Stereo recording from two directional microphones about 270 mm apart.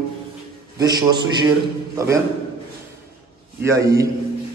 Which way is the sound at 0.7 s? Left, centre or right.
Centre.